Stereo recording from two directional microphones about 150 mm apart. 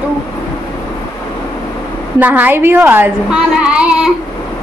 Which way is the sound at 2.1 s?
10° right (ahead or behind).